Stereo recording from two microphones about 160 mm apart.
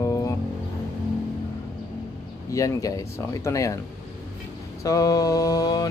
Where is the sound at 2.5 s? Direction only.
20° left (ahead or behind).